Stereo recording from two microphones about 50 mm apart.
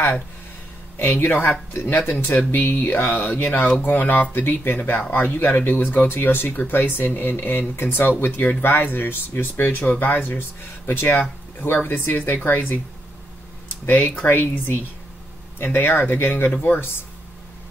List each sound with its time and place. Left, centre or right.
0.9 s speech: left
1.7 s speech: left
2.1 s speech: left
13.8 s speech: left